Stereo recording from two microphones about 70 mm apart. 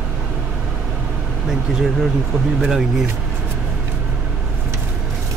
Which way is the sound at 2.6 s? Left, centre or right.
Centre.